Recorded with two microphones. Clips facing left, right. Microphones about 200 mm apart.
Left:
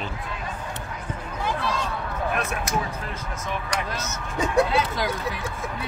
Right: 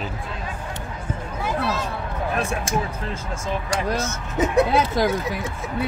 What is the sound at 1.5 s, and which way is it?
Speech, 5° right (ahead or behind).